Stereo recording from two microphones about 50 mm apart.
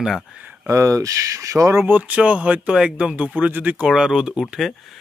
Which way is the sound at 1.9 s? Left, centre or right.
Right.